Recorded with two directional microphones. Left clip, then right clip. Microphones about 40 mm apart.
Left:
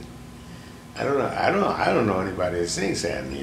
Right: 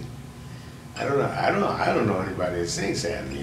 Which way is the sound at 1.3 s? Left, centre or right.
Left.